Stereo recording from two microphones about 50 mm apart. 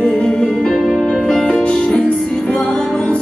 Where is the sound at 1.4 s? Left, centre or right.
Left.